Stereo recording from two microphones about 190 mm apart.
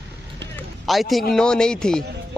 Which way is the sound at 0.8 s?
Centre (ahead or behind).